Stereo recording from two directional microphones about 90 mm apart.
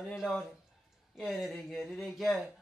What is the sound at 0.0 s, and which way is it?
Speech, 5° right (ahead or behind).